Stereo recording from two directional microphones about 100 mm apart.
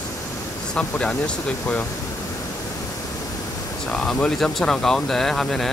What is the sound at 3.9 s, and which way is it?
Speech, 10° left (ahead or behind).